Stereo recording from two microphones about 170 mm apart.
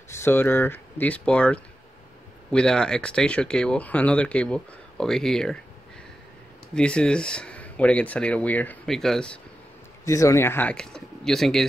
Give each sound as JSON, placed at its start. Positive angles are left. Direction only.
{"t": 0.1, "sound": "speech", "side_deg": 15}
{"t": 6.7, "sound": "speech", "side_deg": 5}
{"t": 10.0, "sound": "speech", "side_deg": 20}